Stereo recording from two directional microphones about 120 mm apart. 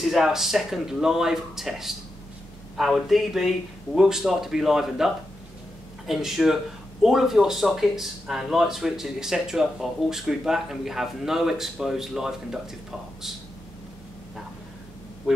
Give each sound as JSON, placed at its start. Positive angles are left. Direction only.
{"t": 0.0, "sound": "speech", "side_deg": 0}
{"t": 15.3, "sound": "quack", "side_deg": -5}